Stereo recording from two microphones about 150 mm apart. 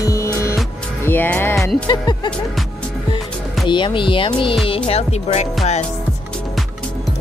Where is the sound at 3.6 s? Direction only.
30° left (ahead or behind).